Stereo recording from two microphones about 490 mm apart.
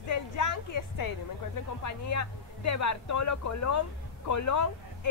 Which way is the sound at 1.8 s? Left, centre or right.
Left.